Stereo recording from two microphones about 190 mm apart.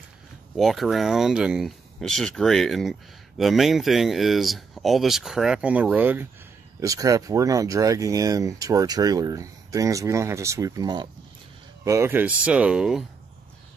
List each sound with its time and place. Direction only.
0.6 s speech: centre (ahead or behind)